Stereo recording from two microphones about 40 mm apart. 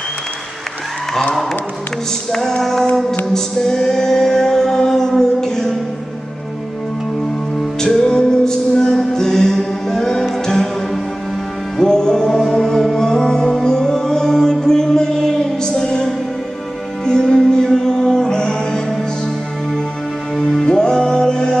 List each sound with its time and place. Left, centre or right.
2.3 s music: centre
7.5 s music: centre
20.3 s music: centre